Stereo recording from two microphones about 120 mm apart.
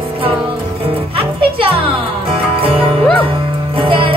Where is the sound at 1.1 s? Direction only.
45° right (ahead or behind).